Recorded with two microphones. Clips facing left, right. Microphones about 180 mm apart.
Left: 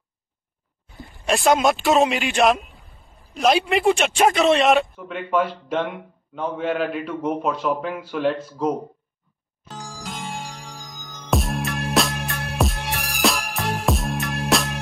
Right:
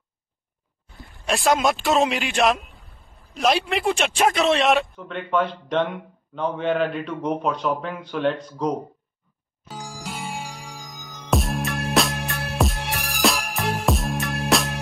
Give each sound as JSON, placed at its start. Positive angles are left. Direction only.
{"t": 1.1, "sound": "a man's voice", "side_deg": 0}
{"t": 9.7, "sound": "music", "side_deg": -10}